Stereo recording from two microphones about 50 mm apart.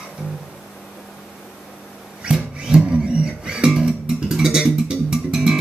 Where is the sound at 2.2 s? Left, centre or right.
Right.